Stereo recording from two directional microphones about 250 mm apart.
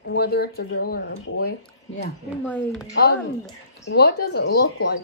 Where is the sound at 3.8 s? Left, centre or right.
Left.